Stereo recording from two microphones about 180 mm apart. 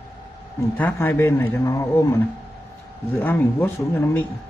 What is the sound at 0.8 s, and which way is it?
A man's voice, 10° left (ahead or behind).